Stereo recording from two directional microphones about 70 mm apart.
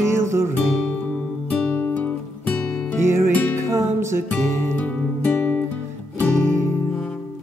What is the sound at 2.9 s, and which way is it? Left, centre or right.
Music, right.